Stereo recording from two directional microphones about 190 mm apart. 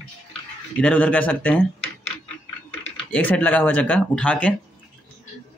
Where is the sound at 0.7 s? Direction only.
5° left (ahead or behind).